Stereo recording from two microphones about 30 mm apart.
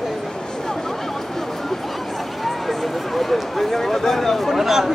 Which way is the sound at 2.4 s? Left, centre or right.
Centre.